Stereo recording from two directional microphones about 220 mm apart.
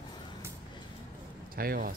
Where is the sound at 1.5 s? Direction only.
40° right (ahead or behind).